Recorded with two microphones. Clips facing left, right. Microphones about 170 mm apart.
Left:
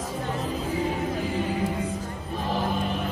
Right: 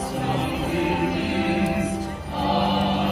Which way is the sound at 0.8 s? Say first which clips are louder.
Right 5 dB; 75° right (ahead or behind).